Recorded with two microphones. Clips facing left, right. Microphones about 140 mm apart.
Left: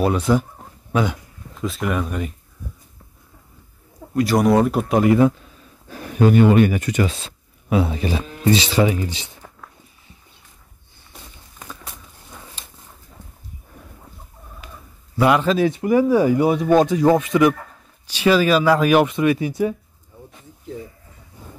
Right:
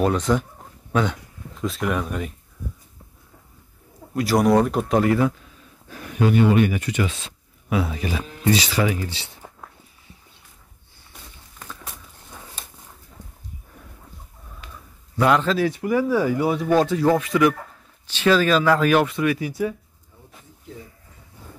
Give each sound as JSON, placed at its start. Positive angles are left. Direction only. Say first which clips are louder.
{"t": 0.0, "sound": "speech", "louder": "left 2 dB", "side_deg": 10}
{"t": 1.6, "sound": "speech", "louder": "left 1 dB", "side_deg": 0}
{"t": 4.1, "sound": "speech", "louder": "left 2 dB", "side_deg": 0}
{"t": 5.9, "sound": "speech", "louder": "left 4 dB", "side_deg": 35}
{"t": 7.7, "sound": "speech", "louder": "left 4 dB", "side_deg": 30}
{"t": 14.6, "sound": "a sound", "louder": "left 1 dB", "side_deg": 5}
{"t": 15.1, "sound": "speech", "louder": "left 2 dB", "side_deg": 10}
{"t": 21.4, "sound": "hiss", "louder": "left 2 dB", "side_deg": 15}